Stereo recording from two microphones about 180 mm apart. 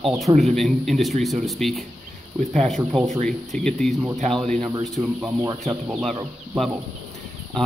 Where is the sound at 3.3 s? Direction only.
5° left (ahead or behind).